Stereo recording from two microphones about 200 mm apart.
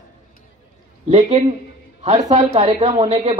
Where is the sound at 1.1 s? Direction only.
35° right (ahead or behind).